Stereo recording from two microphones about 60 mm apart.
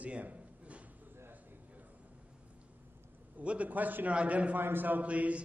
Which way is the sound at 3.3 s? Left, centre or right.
Right.